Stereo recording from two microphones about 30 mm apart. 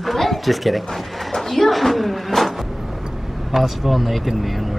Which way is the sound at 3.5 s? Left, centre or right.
Centre.